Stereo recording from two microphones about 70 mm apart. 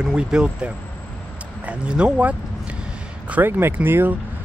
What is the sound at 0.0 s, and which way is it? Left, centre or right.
Speech, centre.